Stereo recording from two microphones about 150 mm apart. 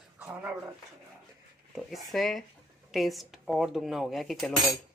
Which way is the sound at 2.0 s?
Centre (ahead or behind).